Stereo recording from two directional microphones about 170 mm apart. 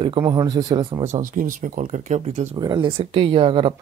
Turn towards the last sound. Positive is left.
turn(degrees=-30)  # may be behind; listen again after turning